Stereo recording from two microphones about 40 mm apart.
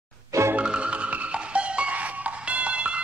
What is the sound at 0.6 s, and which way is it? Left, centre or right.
Music, right.